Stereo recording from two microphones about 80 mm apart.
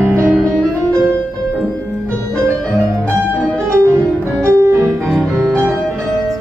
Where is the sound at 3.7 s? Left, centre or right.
Right.